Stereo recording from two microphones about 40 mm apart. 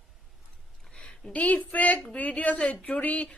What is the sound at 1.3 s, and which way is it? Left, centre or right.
Speech, left.